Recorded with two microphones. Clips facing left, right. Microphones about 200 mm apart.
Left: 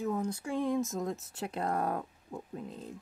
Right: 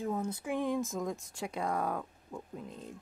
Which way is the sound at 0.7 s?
Centre (ahead or behind).